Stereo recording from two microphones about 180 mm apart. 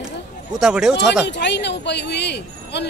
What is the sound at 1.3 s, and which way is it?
Speech, 75° left (ahead or behind).